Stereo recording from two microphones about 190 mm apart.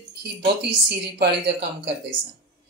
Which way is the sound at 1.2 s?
65° right (ahead or behind).